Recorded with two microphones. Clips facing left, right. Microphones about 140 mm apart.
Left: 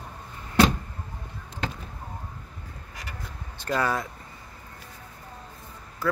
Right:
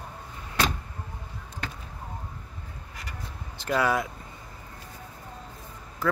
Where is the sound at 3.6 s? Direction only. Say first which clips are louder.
Right 1 dB; 10° right (ahead or behind).